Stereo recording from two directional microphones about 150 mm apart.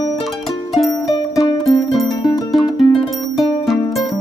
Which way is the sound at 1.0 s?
25° left (ahead or behind).